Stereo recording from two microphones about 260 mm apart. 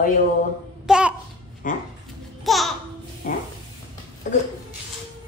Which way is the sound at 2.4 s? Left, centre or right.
Centre.